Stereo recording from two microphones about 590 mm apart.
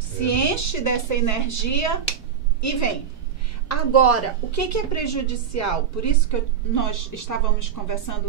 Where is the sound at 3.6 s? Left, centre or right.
Left.